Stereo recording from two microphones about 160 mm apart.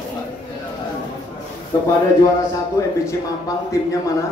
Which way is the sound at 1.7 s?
20° left (ahead or behind).